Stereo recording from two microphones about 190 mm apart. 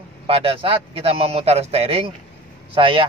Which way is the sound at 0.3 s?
30° right (ahead or behind).